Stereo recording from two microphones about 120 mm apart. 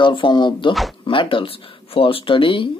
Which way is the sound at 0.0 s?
45° left (ahead or behind).